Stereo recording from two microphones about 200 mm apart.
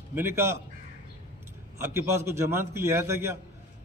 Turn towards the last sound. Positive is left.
turn(degrees=-15)  # may be behind; listen again after turning